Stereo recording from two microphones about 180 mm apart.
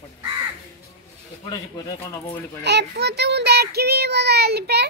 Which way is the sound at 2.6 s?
65° right (ahead or behind).